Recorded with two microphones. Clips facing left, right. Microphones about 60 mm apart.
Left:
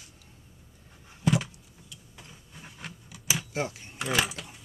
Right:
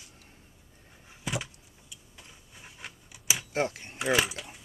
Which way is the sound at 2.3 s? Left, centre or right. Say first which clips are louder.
Left 3 dB; centre.